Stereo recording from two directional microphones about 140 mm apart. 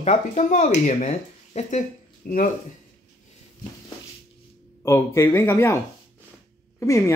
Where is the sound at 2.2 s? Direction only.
90° left.